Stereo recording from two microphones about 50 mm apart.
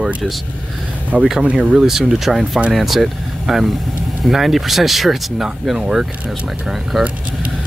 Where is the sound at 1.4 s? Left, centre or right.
Centre.